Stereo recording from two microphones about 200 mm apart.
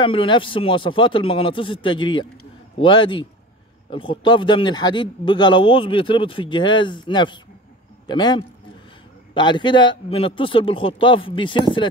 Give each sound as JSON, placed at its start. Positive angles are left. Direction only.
{"t": 0.0, "sound": "a man's voice", "side_deg": 25}